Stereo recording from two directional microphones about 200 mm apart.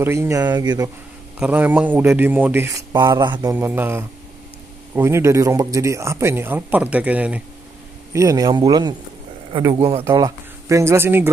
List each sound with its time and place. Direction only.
0.0 s speech: 10° right (ahead or behind)
3.5 s a man's voice: 10° right (ahead or behind)